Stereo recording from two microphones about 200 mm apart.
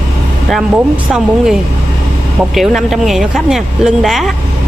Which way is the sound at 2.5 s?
Centre (ahead or behind).